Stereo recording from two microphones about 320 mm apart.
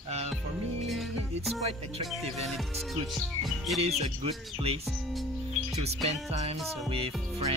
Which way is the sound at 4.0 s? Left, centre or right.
Centre.